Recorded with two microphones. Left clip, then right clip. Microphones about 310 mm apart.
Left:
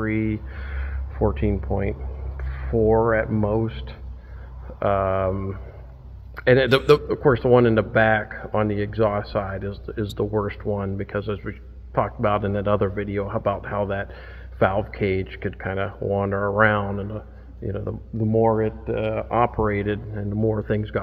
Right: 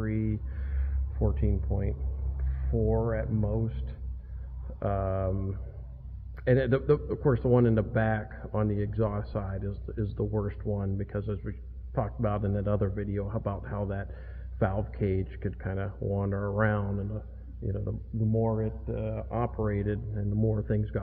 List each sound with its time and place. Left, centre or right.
0.0 s speech: centre
4.7 s a man's voice: centre
18.3 s speech: left; by 21.0 s centre